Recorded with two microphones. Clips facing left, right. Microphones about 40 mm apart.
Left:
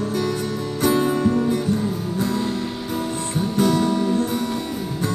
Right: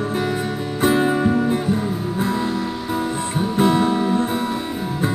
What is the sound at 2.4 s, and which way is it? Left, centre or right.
Music, centre.